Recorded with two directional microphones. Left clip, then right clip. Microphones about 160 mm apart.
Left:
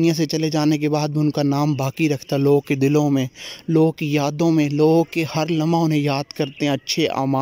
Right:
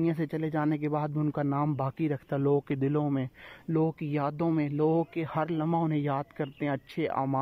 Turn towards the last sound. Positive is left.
turn(degrees=25)  # may be behind; listen again after turning